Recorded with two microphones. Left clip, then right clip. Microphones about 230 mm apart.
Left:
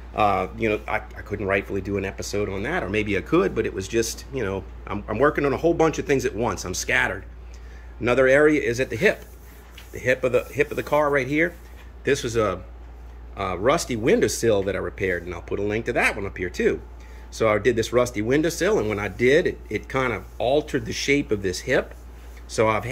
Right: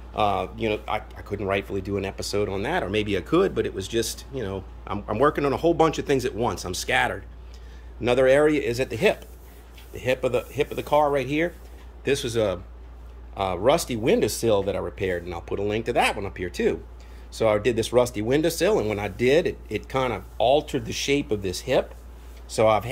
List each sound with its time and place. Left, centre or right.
0.1 s speech: centre